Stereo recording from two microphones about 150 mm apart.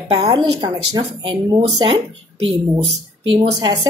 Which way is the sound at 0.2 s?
30° right (ahead or behind).